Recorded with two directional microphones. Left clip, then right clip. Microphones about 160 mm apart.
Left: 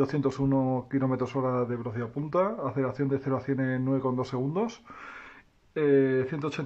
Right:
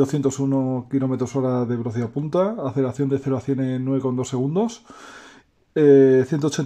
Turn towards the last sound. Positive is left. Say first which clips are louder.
# right 9 dB
turn(degrees=-35)  # may be behind; listen again after turning